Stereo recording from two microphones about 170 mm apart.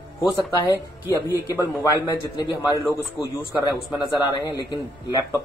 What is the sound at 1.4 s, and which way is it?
A man's voice, 20° left (ahead or behind).